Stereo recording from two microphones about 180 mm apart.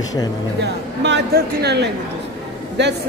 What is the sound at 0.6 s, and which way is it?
A man's voice, 75° right (ahead or behind).